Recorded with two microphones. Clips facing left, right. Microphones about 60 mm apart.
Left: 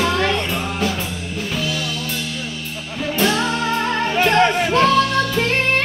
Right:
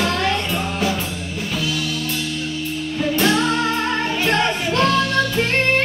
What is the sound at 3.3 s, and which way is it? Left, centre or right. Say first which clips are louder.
Music: right 1 dB; centre.